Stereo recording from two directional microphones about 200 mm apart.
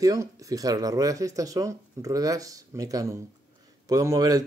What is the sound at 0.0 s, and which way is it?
Speech, 15° right (ahead or behind).